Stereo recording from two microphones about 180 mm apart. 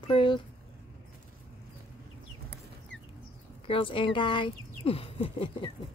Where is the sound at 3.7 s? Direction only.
30° left (ahead or behind).